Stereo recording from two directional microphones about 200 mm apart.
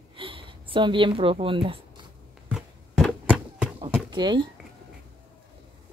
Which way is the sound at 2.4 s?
Centre (ahead or behind).